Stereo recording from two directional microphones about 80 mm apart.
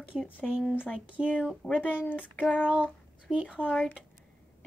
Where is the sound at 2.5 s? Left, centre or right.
Centre.